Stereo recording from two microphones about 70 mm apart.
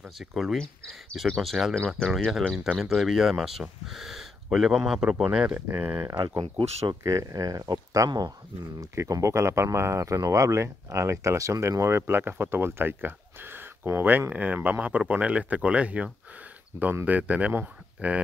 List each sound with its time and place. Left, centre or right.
0.0 s speech: centre
5.7 s speech: right
6.1 s speech: right
7.0 s speech: right
8.7 s speech: right